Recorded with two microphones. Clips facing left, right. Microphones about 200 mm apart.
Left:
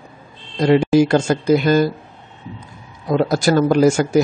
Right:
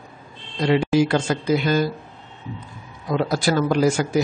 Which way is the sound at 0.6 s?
45° left (ahead or behind).